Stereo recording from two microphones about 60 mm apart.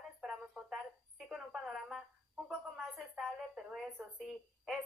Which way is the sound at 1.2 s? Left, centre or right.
Centre.